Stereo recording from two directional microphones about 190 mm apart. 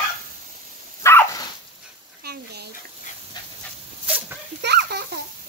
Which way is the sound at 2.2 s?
55° right (ahead or behind).